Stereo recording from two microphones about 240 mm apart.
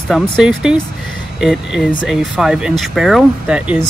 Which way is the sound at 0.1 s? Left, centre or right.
Centre.